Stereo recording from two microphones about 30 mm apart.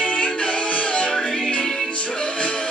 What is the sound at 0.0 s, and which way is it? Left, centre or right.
Music, left.